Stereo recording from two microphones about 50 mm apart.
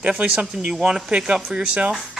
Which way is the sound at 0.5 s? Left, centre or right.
Centre.